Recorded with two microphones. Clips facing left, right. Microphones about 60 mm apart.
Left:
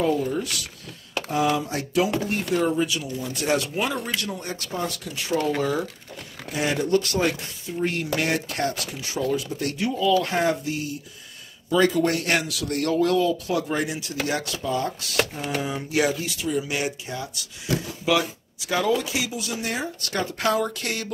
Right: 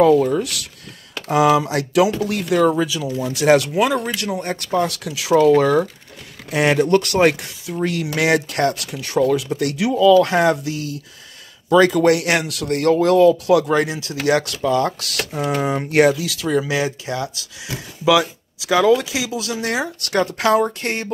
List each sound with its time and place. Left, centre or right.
0.0 s speech: right
1.3 s speech: right
2.2 s speech: right
5.6 s speech: right
11.7 s speech: right
16.8 s speech: right
18.6 s speech: right
20.8 s speech: right